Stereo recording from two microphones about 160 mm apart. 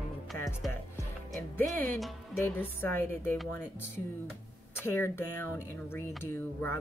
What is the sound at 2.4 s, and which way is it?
Speech, 15° left (ahead or behind).